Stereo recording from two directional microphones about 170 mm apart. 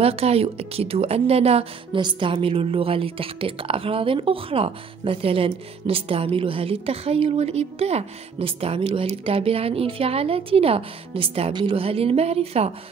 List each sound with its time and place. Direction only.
0.0 s a woman's voice: 35° right (ahead or behind)